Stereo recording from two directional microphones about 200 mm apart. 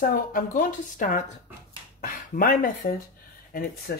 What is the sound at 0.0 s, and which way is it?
Speech, 45° left (ahead or behind).